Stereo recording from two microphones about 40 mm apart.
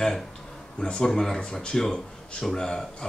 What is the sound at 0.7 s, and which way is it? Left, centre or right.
Speech, centre.